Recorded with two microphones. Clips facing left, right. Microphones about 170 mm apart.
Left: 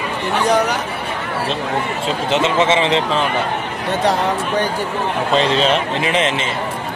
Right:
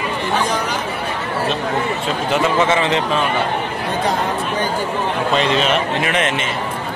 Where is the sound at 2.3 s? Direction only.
25° left (ahead or behind).